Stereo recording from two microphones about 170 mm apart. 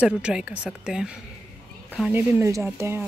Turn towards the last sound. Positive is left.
turn(degrees=-15)  # may be behind; listen again after turning